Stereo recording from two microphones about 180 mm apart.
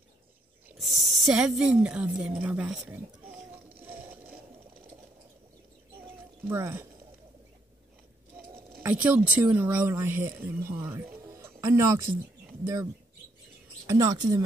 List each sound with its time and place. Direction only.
0.7 s a woman's voice: centre (ahead or behind)
3.8 s a sound: 10° right (ahead or behind)
6.5 s speech: 15° right (ahead or behind)
8.8 s speech: 10° right (ahead or behind)
11.3 s music: 15° right (ahead or behind)
13.8 s a woman's voice: 20° right (ahead or behind)